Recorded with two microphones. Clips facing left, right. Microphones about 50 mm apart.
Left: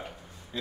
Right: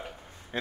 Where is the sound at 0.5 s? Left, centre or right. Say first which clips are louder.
Right 3 dB; right.